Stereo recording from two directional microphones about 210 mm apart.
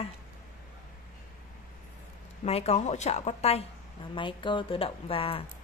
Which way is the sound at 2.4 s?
30° left (ahead or behind).